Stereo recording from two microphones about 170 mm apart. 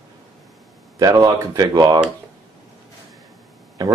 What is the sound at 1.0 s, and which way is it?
Speech, 20° right (ahead or behind).